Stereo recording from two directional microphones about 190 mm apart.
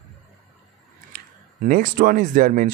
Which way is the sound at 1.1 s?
45° right (ahead or behind).